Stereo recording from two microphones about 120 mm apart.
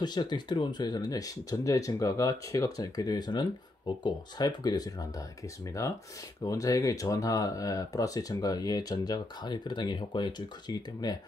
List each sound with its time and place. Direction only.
0.0 s speech: 35° left (ahead or behind)